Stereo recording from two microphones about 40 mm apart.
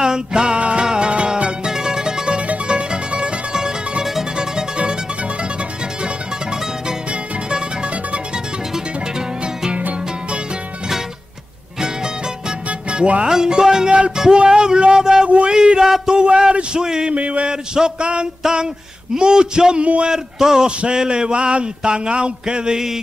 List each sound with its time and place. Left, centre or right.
0.0 s music: centre
4.0 s music: centre
12.6 s music: right
13.3 s speech: centre
15.2 s speech: right
15.5 s a sound: right
15.8 s speech: centre
17.1 s a sound: right
17.5 s speech: centre
18.4 s a sound: right
19.1 s speech: right
19.8 s a sound: right
20.1 s speech: centre